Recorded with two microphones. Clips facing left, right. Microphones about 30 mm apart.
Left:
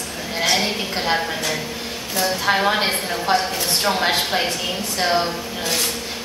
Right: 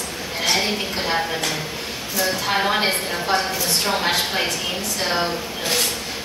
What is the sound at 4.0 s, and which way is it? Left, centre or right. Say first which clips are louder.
Speech: left 2 dB; left.